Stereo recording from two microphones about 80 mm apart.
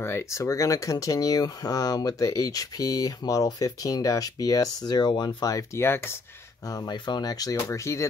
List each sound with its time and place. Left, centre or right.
0.3 s speech: left
5.8 s speech: left
6.7 s speech: left
7.5 s speech: left